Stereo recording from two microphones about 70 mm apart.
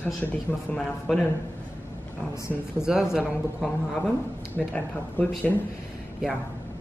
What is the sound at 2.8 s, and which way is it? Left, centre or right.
Speech, centre.